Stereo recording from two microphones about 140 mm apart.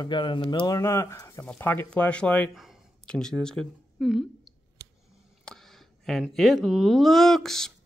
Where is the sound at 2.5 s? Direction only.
Centre (ahead or behind).